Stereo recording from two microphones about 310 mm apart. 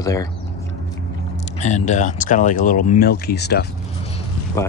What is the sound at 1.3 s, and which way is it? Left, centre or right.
Speech, left.